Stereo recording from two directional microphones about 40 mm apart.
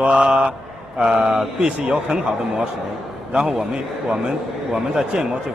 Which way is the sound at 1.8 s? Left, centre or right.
Right.